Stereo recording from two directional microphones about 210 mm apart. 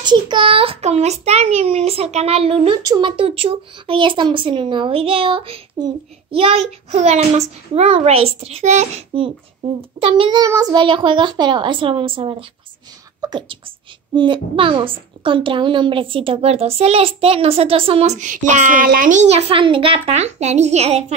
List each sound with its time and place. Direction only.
0.0 s a child's voice: 20° right (ahead or behind)